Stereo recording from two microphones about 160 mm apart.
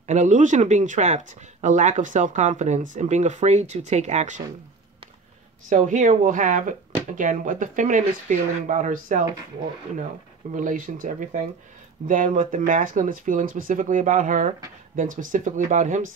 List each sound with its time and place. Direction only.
0.0 s speech: 50° right (ahead or behind)
5.7 s speech: 50° right (ahead or behind)
10.5 s speech: 55° right (ahead or behind)